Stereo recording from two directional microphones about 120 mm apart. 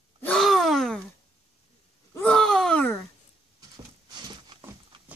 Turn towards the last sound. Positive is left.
turn(degrees=-40)  # may be behind; listen again after turning